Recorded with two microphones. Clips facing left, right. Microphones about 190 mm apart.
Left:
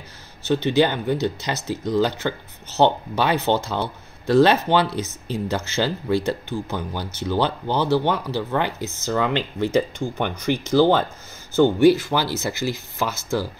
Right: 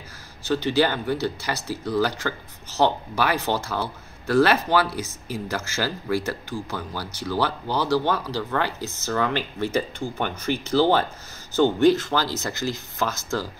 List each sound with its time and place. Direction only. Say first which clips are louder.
0.7 s speech: left 3 dB; 20° left (ahead or behind)